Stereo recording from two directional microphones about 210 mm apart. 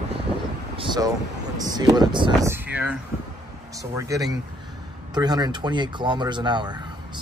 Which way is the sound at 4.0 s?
15° right (ahead or behind).